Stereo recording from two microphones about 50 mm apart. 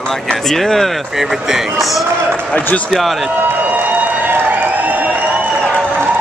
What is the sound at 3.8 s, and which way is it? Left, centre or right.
Applause, right.